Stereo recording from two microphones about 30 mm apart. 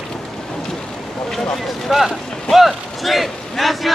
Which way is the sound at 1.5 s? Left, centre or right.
Centre.